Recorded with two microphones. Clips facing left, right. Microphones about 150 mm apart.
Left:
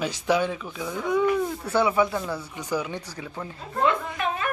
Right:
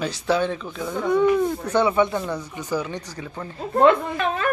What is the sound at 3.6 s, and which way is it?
Speech, 65° right (ahead or behind).